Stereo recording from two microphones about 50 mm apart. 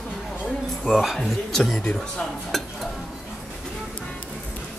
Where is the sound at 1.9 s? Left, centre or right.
Centre.